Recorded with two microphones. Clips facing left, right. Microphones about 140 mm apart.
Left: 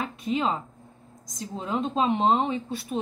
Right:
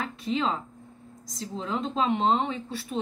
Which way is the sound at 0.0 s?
15° left (ahead or behind).